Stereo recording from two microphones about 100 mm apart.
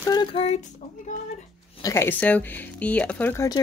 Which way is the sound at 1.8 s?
25° left (ahead or behind).